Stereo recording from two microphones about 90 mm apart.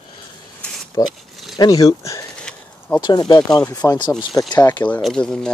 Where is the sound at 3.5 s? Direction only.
40° left (ahead or behind).